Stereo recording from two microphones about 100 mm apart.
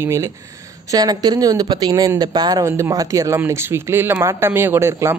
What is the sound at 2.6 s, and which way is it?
Speech, 30° right (ahead or behind).